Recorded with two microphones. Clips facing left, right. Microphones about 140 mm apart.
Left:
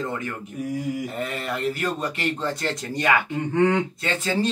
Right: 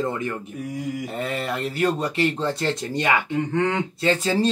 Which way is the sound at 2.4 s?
25° right (ahead or behind).